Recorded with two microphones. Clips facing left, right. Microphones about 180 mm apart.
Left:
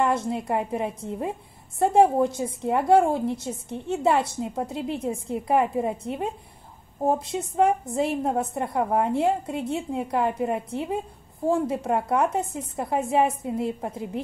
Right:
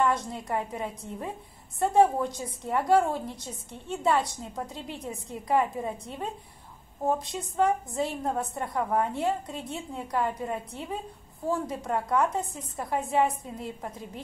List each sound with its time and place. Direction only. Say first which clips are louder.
0.0 s a woman's voice: left 3 dB; 25° left (ahead or behind)